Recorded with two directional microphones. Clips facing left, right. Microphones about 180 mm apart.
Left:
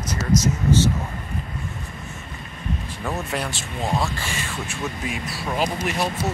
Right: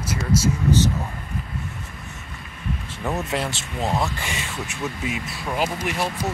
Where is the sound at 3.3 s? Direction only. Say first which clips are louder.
Right 1 dB; 20° right (ahead or behind).